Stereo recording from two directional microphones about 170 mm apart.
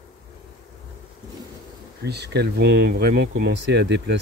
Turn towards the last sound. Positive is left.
turn(degrees=-90)